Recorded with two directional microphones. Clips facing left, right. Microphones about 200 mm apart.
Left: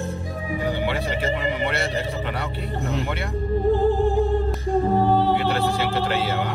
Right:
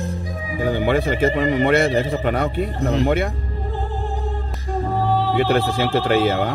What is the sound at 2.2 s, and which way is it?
Speech, 45° right (ahead or behind).